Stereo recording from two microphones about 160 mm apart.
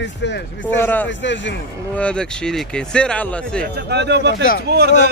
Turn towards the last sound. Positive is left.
turn(degrees=-90)